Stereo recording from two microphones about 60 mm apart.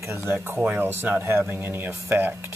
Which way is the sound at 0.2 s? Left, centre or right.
Right.